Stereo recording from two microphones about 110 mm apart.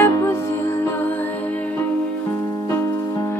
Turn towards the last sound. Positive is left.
turn(degrees=25)  # may be behind; listen again after turning